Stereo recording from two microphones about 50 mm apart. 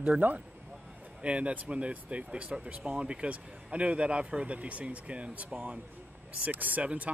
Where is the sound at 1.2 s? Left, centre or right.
Right.